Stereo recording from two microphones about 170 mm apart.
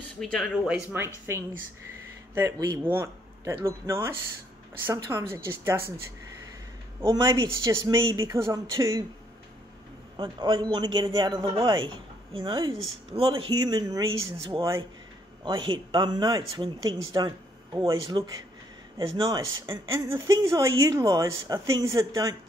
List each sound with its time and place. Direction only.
0.2 s a man's voice: centre (ahead or behind)
7.0 s speech: 15° right (ahead or behind)
10.1 s a man's voice: 25° right (ahead or behind)
15.4 s a man's voice: 30° right (ahead or behind)
19.9 s a man's voice: 15° right (ahead or behind)